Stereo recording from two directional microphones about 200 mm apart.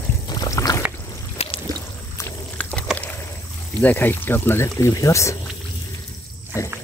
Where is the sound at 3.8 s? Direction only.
10° left (ahead or behind).